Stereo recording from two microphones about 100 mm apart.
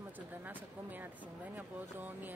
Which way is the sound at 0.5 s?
20° right (ahead or behind).